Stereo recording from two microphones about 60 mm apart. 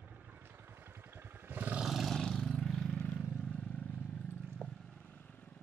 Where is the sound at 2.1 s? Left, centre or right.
Centre.